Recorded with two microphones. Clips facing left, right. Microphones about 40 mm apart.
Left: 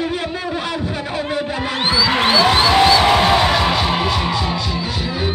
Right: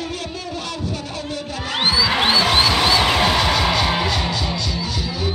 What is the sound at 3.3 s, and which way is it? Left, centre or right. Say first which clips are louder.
Music: left 3 dB; centre.